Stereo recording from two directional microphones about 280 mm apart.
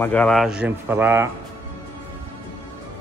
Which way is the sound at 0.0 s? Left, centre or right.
Centre.